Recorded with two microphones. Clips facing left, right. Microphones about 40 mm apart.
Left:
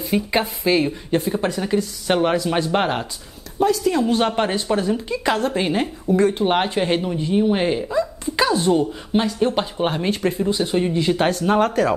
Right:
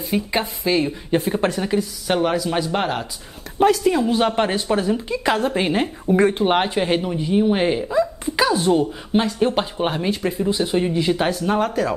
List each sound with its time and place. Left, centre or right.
0.0 s speech: centre
1.4 s speech: right
2.0 s speech: centre
3.5 s a woman's voice: right
3.9 s a woman's voice: centre
6.1 s speech: right
6.4 s speech: centre